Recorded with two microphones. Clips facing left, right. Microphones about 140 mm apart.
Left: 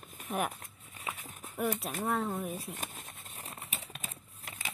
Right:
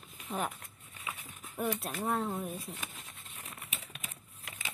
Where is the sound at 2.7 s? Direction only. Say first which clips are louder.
Left 2 dB; 45° left (ahead or behind).